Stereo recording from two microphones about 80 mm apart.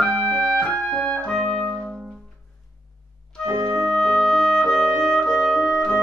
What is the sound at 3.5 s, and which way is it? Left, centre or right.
Organ, right.